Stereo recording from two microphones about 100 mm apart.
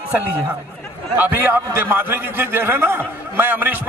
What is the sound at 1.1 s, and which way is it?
A man's voice, 20° right (ahead or behind).